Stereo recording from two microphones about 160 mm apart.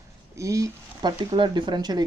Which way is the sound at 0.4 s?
20° right (ahead or behind).